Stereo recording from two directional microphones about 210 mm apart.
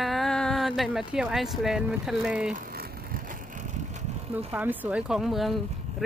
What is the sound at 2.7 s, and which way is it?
Vehicle, 45° right (ahead or behind).